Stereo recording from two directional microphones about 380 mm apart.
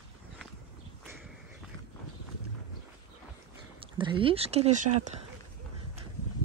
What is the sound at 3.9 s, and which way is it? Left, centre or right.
Speech, centre.